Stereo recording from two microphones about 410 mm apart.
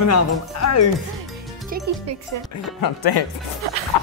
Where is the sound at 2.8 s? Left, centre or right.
Left.